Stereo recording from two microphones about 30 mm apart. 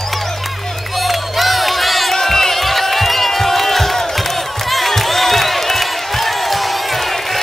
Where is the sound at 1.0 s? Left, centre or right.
Centre.